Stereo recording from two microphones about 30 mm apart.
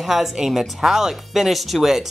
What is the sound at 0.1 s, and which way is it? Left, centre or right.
Speech, centre.